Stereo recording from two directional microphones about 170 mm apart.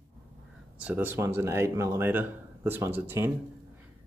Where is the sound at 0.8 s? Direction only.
10° right (ahead or behind).